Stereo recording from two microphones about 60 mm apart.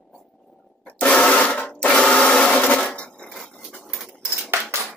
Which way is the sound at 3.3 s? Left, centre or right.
Centre.